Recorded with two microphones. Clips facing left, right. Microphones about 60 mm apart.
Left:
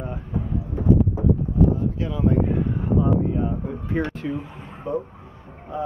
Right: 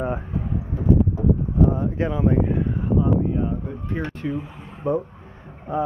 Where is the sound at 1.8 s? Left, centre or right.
Right.